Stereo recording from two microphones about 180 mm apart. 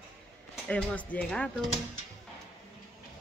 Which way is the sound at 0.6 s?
5° left (ahead or behind).